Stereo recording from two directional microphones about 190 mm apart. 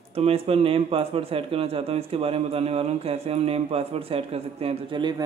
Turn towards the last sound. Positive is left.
turn(degrees=-25)  # may be behind; listen again after turning